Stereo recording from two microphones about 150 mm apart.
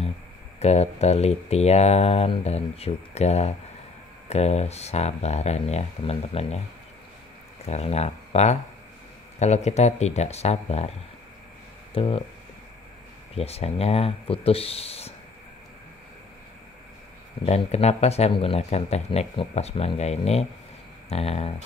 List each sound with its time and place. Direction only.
0.6 s speech: 45° left (ahead or behind)
7.6 s speech: 45° left (ahead or behind)
11.9 s speech: 40° left (ahead or behind)
13.3 s speech: 40° left (ahead or behind)
17.5 s speech: 45° left (ahead or behind)